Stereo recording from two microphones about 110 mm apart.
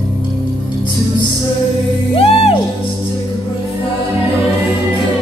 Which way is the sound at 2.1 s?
60° left (ahead or behind).